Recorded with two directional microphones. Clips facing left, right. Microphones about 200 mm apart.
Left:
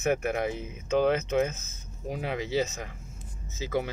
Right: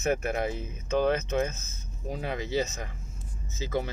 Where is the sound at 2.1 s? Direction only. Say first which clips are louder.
Left 1 dB; 10° left (ahead or behind).